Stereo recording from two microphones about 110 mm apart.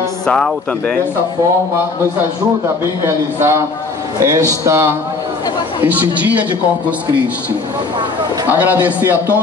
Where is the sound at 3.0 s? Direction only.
25° right (ahead or behind).